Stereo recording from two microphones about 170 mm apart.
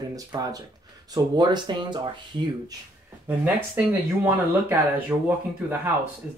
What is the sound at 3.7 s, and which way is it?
Speech, 10° right (ahead or behind).